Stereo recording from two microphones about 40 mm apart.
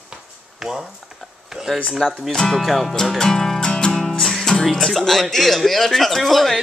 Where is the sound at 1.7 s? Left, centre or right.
Centre.